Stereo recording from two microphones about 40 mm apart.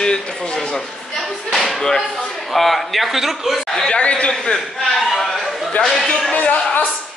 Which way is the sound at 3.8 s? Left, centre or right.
Left.